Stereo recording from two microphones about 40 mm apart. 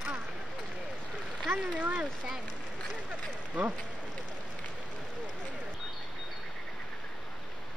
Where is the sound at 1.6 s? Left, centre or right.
Right.